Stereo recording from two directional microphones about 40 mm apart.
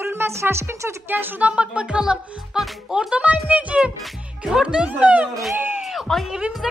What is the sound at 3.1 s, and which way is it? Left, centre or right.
Speech, right.